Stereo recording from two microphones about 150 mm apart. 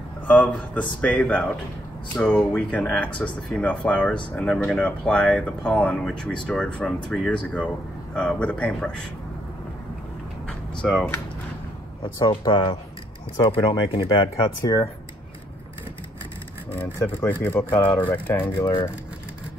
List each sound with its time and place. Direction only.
0.3 s speech: 10° left (ahead or behind)
10.4 s vehicle: 5° left (ahead or behind)
12.0 s speech: 30° left (ahead or behind)
16.7 s speech: 15° left (ahead or behind)